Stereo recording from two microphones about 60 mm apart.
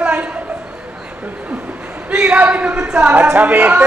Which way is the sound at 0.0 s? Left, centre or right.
Right.